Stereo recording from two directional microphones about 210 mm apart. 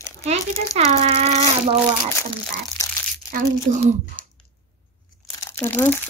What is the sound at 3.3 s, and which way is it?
Speech, 40° right (ahead or behind).